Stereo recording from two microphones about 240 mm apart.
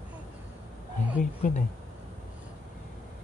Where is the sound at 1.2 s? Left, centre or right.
Left.